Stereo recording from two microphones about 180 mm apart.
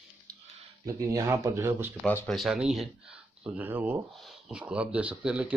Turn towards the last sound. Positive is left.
turn(degrees=-5)  # may be behind; listen again after turning